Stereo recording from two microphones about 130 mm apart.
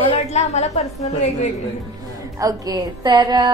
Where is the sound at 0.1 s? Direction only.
55° left (ahead or behind).